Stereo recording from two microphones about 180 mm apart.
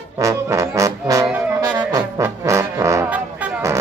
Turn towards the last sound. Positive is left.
turn(degrees=-15)  # may be behind; listen again after turning